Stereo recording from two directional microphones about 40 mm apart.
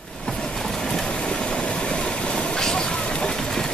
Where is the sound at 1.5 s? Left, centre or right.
Left.